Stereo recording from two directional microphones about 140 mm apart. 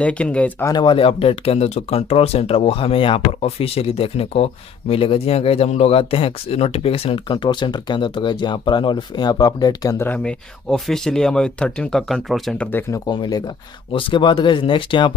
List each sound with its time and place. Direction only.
0.0 s speech: 10° left (ahead or behind)
0.7 s speech: 35° left (ahead or behind)
10.0 s speech: 10° left (ahead or behind)
13.0 s speech: 30° left (ahead or behind)